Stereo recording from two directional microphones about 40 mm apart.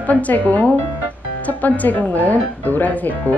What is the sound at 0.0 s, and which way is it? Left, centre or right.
Speech, left.